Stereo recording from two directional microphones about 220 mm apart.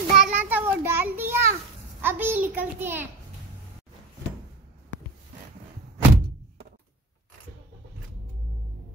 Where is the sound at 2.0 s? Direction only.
10° right (ahead or behind).